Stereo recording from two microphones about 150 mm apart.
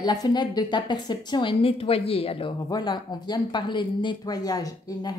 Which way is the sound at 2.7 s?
30° left (ahead or behind).